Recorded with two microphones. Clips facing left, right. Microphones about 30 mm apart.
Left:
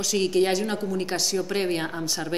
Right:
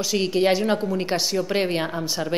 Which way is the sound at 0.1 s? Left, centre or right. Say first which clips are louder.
Right 2 dB; centre.